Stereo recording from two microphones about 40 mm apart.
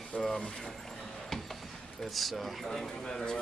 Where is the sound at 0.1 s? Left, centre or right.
Left.